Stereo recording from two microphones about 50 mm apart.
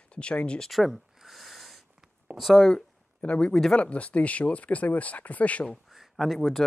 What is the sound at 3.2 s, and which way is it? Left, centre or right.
Speech, left.